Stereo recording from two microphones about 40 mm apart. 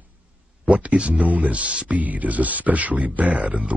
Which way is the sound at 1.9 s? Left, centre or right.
Right.